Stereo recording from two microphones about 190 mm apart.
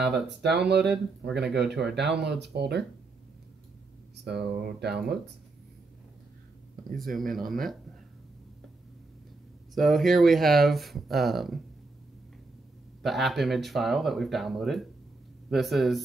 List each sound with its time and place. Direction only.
0.3 s speech: 60° right (ahead or behind)
0.8 s speech: centre (ahead or behind)
2.2 s speech: 60° right (ahead or behind)
4.2 s speech: 60° right (ahead or behind)
7.0 s speech: centre (ahead or behind)
9.8 s speech: centre (ahead or behind)
13.0 s speech: centre (ahead or behind)